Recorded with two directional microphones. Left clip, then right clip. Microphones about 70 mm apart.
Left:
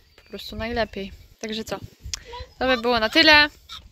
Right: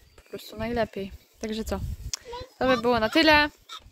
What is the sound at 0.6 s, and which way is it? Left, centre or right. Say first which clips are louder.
Speech: left 2 dB; right.